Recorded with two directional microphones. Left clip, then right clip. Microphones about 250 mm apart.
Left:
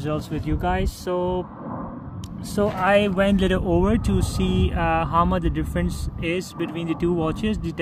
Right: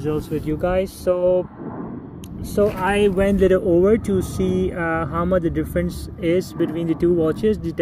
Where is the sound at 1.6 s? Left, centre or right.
Left.